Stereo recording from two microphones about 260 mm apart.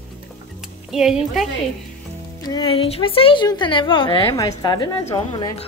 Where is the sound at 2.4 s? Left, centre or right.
Centre.